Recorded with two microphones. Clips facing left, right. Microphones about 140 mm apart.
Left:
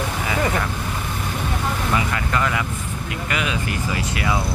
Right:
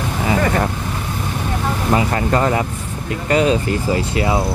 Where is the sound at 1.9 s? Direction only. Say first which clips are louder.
Right 8 dB; 35° right (ahead or behind).